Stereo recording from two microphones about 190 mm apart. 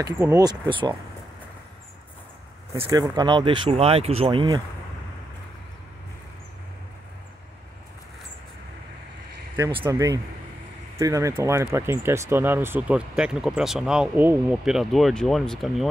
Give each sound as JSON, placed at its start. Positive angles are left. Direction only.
{"t": 0.0, "sound": "speech", "side_deg": -20}
{"t": 2.9, "sound": "speech", "side_deg": -20}
{"t": 9.6, "sound": "speech", "side_deg": -20}